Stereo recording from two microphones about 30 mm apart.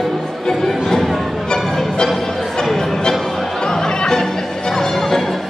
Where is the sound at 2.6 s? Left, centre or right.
Centre.